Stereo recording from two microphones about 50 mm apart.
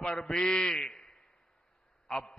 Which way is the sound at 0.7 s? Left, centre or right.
Centre.